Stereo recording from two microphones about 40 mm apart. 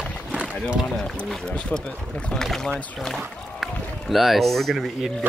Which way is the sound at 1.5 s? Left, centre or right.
Left.